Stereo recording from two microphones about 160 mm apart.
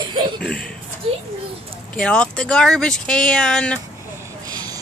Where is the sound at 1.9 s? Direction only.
5° left (ahead or behind).